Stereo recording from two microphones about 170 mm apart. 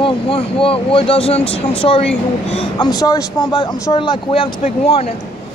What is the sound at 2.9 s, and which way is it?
Speech, 20° left (ahead or behind).